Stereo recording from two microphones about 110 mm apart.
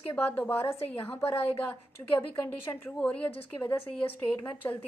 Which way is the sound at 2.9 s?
10° left (ahead or behind).